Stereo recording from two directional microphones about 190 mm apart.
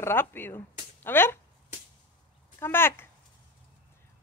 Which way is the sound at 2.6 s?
10° left (ahead or behind).